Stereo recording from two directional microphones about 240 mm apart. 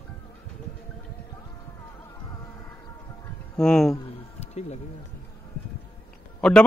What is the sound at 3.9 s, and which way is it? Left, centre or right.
Insect, left.